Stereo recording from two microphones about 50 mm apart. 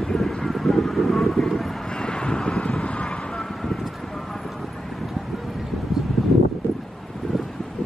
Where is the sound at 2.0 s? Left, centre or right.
Centre.